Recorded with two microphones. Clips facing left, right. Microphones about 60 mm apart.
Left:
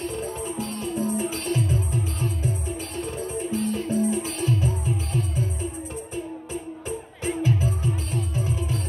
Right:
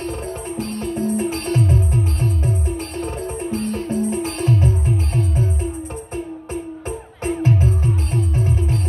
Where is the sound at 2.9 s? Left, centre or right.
Right.